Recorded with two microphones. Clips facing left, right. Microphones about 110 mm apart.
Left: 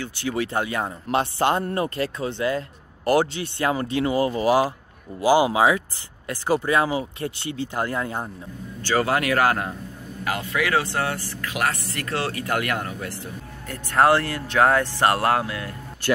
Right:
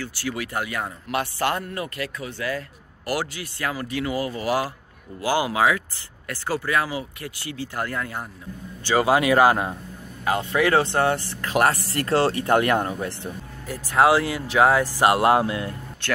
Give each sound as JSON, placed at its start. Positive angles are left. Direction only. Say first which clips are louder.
{"t": 0.0, "sound": "speech", "louder": "left 3 dB", "side_deg": 20}
{"t": 8.8, "sound": "speech", "louder": "right 3 dB", "side_deg": -15}
{"t": 13.7, "sound": "speech", "louder": "even", "side_deg": -5}